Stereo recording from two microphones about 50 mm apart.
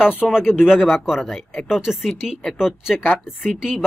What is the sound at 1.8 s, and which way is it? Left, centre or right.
Speech, centre.